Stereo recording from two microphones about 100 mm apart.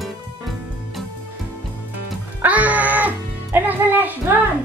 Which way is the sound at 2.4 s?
15° right (ahead or behind).